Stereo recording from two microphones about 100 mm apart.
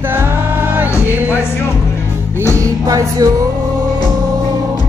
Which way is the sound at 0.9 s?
25° left (ahead or behind).